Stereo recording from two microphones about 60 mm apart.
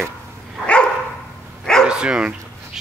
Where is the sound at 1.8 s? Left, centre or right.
Centre.